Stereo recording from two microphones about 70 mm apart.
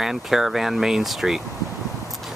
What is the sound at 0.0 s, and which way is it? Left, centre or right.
Speech, centre.